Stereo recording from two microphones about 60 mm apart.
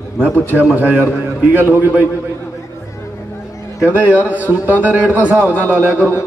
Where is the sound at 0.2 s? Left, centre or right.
Right.